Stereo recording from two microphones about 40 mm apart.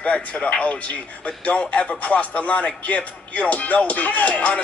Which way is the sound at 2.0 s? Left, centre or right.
Left.